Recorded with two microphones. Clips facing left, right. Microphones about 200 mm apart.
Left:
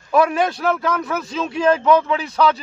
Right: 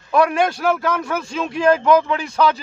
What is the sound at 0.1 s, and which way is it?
A man's voice, centre (ahead or behind).